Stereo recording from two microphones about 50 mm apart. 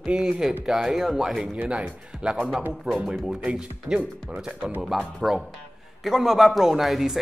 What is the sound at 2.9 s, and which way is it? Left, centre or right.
Speech, right.